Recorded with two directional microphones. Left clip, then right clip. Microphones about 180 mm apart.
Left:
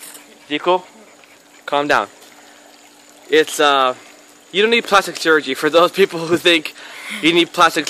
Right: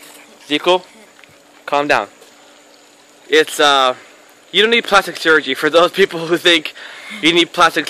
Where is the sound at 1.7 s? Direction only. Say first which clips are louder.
Right 1 dB; centre (ahead or behind).